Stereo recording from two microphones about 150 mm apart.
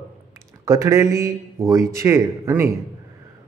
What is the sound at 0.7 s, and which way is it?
Speech, 20° right (ahead or behind).